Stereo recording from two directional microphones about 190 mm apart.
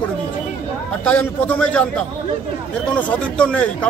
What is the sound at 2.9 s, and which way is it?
Speech, 5° left (ahead or behind).